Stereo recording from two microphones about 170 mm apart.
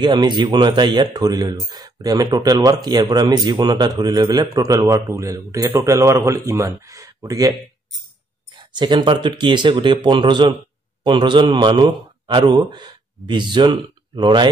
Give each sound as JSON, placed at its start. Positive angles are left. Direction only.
{"t": 0.0, "sound": "speech", "side_deg": -25}
{"t": 8.5, "sound": "a man's voice", "side_deg": -25}